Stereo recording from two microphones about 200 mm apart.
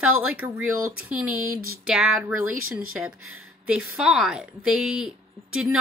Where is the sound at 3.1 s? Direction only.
90° right.